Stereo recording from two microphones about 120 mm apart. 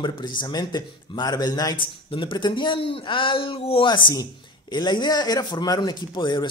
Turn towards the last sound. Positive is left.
turn(degrees=40)  # may be behind; listen again after turning